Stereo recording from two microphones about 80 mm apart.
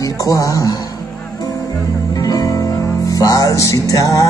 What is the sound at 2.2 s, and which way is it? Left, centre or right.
Music, left.